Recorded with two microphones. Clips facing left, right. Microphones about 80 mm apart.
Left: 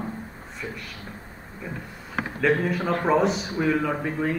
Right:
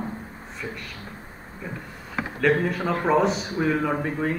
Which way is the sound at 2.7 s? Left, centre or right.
Centre.